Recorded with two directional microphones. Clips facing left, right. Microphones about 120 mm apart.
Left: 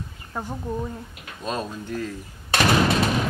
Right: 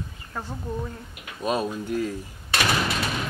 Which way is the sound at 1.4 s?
10° right (ahead or behind).